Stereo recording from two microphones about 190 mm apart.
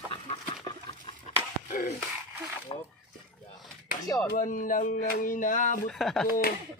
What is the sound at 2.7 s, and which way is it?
Speech, 25° left (ahead or behind).